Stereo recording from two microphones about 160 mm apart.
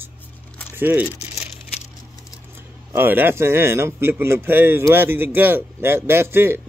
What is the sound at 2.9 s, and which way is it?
Speech, 15° right (ahead or behind).